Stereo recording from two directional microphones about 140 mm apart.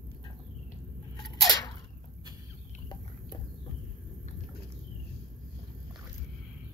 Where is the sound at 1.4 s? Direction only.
25° left (ahead or behind).